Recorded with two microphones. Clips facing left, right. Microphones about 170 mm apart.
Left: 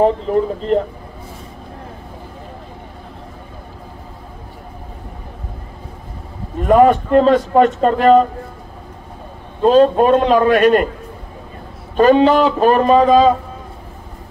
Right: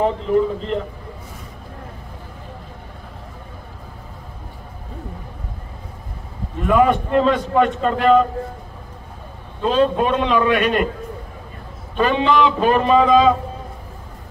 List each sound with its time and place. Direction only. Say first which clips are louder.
0.7 s a man's voice: left 7 dB; 45° left (ahead or behind)
6.6 s a man's voice: left 5 dB; 45° left (ahead or behind)
9.6 s a man's voice: left 6 dB; 45° left (ahead or behind)
12.0 s speech: left 6 dB; 45° left (ahead or behind)